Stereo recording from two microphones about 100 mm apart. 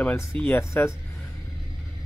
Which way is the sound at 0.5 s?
25° left (ahead or behind).